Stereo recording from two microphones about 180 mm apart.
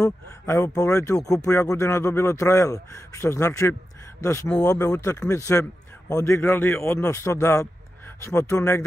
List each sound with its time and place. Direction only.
0.0 s speech: 15° left (ahead or behind)